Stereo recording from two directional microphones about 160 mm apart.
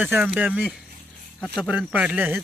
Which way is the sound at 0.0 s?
10° right (ahead or behind).